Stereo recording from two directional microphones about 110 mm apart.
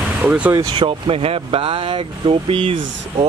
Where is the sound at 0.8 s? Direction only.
55° right (ahead or behind).